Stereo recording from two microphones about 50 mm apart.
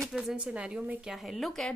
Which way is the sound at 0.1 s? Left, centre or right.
Centre.